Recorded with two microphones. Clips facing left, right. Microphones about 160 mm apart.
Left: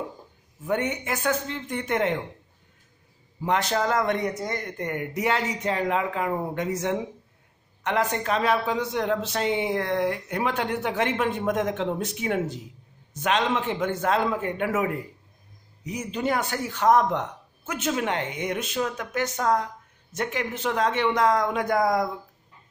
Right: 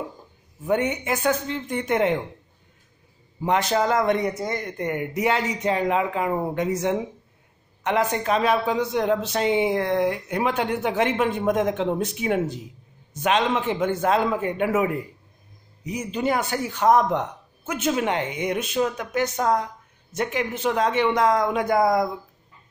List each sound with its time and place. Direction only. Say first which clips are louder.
0.7 s speech: right 4 dB; 15° right (ahead or behind)
3.4 s speech: right 3 dB; 15° right (ahead or behind)